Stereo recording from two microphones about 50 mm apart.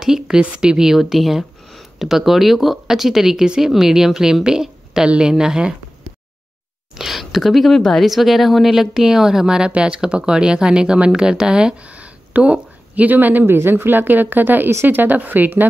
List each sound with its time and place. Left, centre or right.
0.0 s a woman's voice: centre
7.0 s a woman's voice: centre; by 15.7 s right